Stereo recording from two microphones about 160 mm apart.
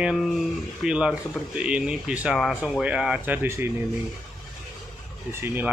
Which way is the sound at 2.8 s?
5° right (ahead or behind).